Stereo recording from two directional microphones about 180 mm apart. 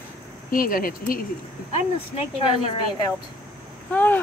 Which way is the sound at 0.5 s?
55° left (ahead or behind).